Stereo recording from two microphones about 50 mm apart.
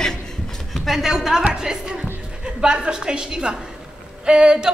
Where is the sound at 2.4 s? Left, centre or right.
Centre.